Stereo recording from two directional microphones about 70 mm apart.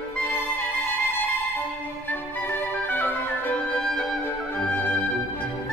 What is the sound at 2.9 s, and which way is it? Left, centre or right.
Music, left.